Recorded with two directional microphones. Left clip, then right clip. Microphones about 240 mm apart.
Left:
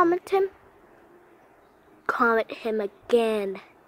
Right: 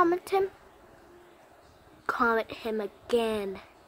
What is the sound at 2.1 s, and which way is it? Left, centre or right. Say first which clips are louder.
A woman's voice: left 4 dB; centre.